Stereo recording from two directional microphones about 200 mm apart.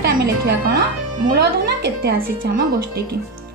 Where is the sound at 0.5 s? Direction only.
55° right (ahead or behind).